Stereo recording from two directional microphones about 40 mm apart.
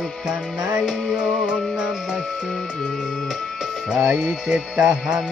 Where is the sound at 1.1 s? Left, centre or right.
Right.